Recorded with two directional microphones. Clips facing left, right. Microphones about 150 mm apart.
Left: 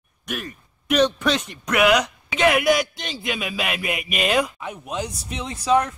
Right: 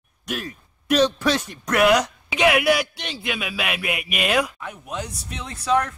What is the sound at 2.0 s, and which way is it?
A man's voice, 5° right (ahead or behind).